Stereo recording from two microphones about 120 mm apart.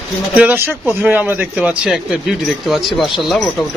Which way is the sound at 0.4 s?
15° right (ahead or behind).